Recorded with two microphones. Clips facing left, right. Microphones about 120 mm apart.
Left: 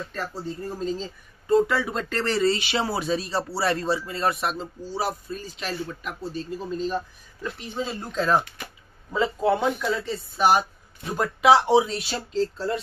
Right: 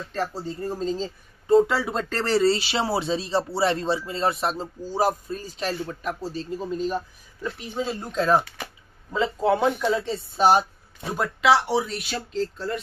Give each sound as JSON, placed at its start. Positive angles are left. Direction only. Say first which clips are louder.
{"t": 0.1, "sound": "speech", "louder": "right 3 dB", "side_deg": -30}
{"t": 4.8, "sound": "speech", "louder": "right 5 dB", "side_deg": -45}
{"t": 6.6, "sound": "speech", "louder": "right 1 dB", "side_deg": -15}
{"t": 9.1, "sound": "speech", "louder": "even", "side_deg": 0}
{"t": 9.7, "sound": "speech", "louder": "right 2 dB", "side_deg": -10}
{"t": 10.0, "sound": "speech", "louder": "right 1 dB", "side_deg": -25}
{"t": 11.4, "sound": "speech", "louder": "left 3 dB", "side_deg": 20}
{"t": 11.9, "sound": "speech", "louder": "left 1 dB", "side_deg": 30}